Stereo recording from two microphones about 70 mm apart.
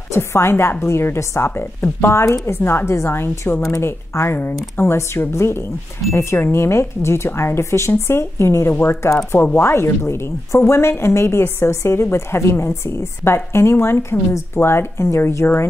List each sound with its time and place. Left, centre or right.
0.1 s a woman's voice: left